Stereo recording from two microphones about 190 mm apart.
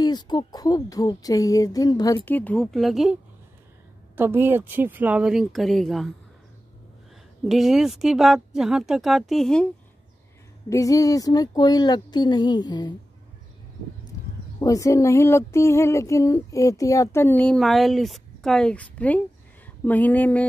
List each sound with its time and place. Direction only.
0.0 s speech: 20° left (ahead or behind)
2.2 s speech: 10° left (ahead or behind)
4.2 s speech: 10° right (ahead or behind)
7.4 s speech: centre (ahead or behind)
10.7 s speech: 15° left (ahead or behind)
14.6 s a sound: 15° left (ahead or behind)